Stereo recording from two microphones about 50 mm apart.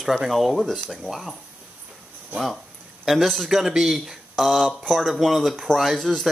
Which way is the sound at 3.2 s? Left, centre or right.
Centre.